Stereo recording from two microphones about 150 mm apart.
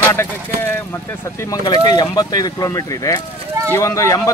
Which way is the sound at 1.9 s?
25° left (ahead or behind).